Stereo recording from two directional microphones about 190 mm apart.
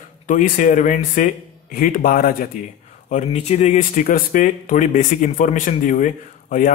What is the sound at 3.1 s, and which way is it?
Speech, 35° left (ahead or behind).